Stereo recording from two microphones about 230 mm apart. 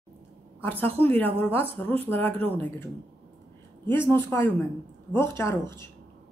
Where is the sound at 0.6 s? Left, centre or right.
Centre.